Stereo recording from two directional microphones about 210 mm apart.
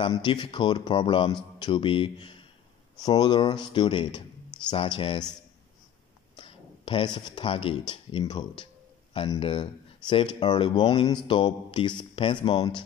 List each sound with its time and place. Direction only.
0.0 s a man's voice: 25° left (ahead or behind)
6.3 s a man's voice: 25° left (ahead or behind)